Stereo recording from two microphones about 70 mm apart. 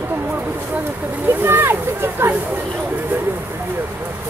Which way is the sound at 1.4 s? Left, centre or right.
Right.